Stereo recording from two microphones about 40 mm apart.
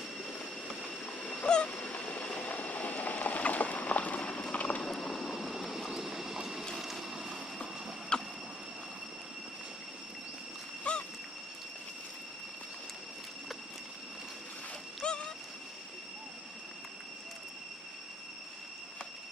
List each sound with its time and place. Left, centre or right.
0.8 s train: left
4.8 s vehicle: centre
5.9 s train: centre
6.8 s vehicle: centre
8.1 s vehicle: left
10.8 s a sound: left
15.0 s a sound: left